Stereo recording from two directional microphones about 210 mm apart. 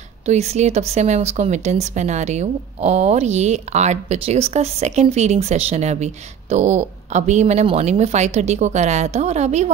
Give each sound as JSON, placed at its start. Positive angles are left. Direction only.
{"t": 0.2, "sound": "speech", "side_deg": -30}